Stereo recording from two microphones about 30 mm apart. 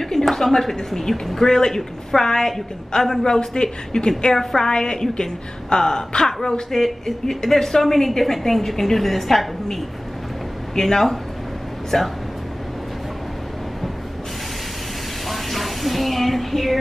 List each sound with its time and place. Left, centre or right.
0.0 s a woman's voice: centre
3.3 s speech: left
6.7 s a woman's voice: centre
7.5 s a woman's voice: centre
10.7 s a woman's voice: centre
15.2 s a sound: centre